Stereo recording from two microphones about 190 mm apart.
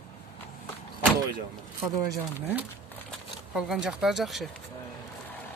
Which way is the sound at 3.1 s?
Centre (ahead or behind).